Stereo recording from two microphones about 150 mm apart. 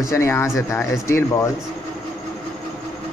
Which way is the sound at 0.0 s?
20° left (ahead or behind).